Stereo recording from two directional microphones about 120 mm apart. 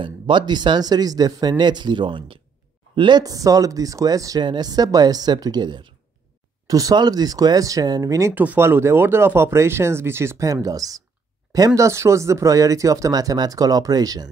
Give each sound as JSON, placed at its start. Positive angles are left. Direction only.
{"t": 0.0, "sound": "speech", "side_deg": -40}
{"t": 6.7, "sound": "speech", "side_deg": -30}